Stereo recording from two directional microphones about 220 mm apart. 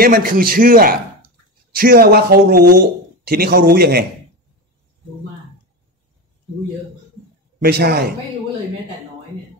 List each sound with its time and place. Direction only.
0.0 s a man's voice: 40° right (ahead or behind)
7.6 s speech: 45° right (ahead or behind)